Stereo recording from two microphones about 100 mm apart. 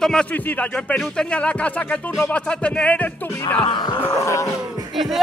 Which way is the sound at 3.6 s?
60° left (ahead or behind).